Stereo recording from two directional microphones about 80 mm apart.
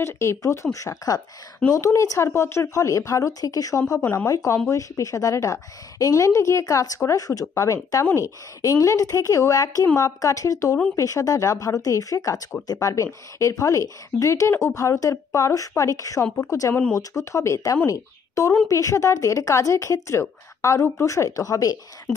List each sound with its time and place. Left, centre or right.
0.0 s a woman's voice: left
4.0 s speech: left
4.3 s a woman's voice: left